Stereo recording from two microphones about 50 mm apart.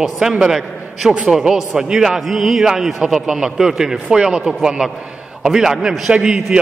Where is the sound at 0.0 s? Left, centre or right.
Centre.